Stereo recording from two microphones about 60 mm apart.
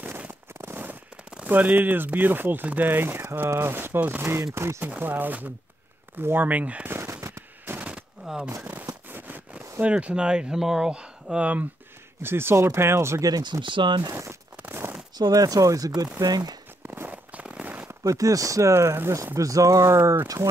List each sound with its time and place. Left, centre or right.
0.6 s a sound: right
1.5 s speech: right
5.0 s speech: right
6.9 s fireworks: right
7.8 s machine gun: centre
9.5 s speech: right
12.2 s speech: right
13.5 s speech: right
15.2 s speech: right
16.2 s speech: right
16.8 s walk: right
17.3 s firecracker: right
18.0 s speech: right
19.3 s speech: right